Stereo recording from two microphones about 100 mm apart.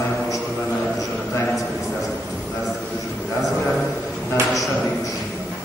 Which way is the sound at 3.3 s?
Centre (ahead or behind).